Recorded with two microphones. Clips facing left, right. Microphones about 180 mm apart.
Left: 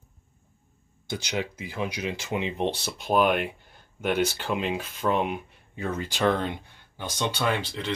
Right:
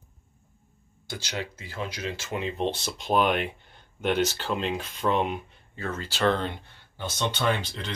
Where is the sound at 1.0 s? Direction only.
15° left (ahead or behind).